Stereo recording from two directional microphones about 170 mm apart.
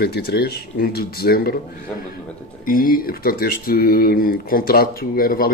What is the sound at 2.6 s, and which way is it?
Speech, 55° left (ahead or behind).